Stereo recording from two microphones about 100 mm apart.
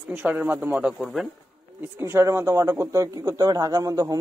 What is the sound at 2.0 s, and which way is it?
Speech, 25° right (ahead or behind).